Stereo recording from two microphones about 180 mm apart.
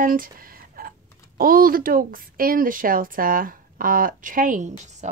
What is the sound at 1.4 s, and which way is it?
A woman's voice, 50° right (ahead or behind).